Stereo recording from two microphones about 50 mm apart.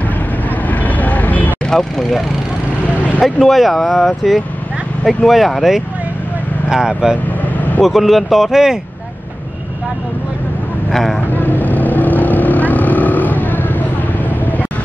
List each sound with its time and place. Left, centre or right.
0.7 s vehicle: left
1.7 s speech: centre
10.9 s speech: centre
11.3 s vehicle: left